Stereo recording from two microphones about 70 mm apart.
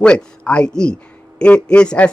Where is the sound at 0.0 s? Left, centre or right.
Centre.